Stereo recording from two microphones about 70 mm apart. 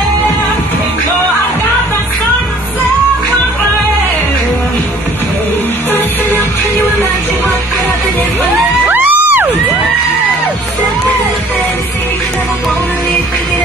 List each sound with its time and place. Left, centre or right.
8.8 s music: right